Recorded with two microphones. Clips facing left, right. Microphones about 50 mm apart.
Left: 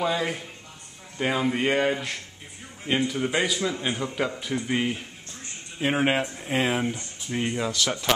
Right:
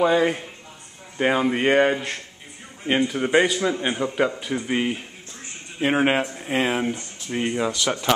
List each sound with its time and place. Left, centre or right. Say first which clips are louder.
0.0 s speech: right 7 dB; centre
3.3 s a man's voice: right 6 dB; centre